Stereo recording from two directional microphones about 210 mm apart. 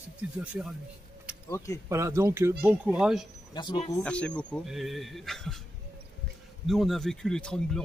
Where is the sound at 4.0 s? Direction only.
5° left (ahead or behind).